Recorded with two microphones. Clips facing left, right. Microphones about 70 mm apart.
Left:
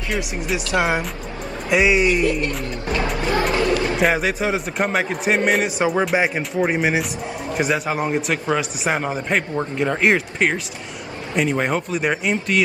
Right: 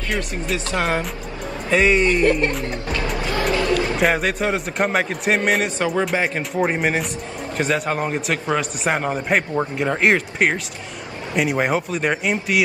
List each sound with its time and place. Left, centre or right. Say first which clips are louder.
0.1 s speech: left 1 dB; centre
3.0 s music: left 3 dB; left
3.7 s a man's voice: even; centre
5.8 s speech: left 2 dB; centre
6.5 s a man's voice: even; centre